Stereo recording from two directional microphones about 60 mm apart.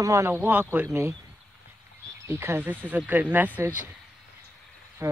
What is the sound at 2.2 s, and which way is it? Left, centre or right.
Speech, right.